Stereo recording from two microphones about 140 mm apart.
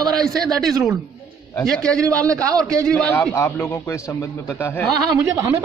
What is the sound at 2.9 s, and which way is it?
Speech, 10° left (ahead or behind).